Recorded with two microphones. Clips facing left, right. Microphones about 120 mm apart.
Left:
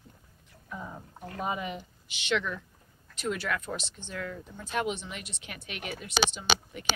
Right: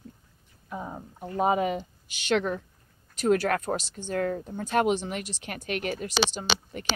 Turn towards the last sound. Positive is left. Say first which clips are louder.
# even
turn(degrees=-45)  # may be behind; listen again after turning